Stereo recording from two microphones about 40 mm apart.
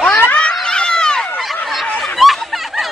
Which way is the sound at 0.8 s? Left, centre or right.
Centre.